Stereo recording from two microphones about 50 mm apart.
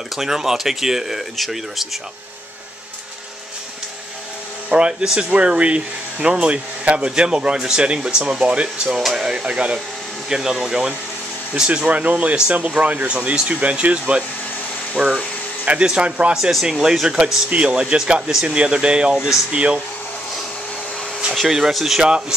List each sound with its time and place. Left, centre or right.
0.1 s speech: centre
4.6 s speech: centre
8.8 s speech: centre
16.6 s speech: centre
17.5 s speech: right
19.1 s speech: centre
19.5 s speech: right
21.4 s speech: centre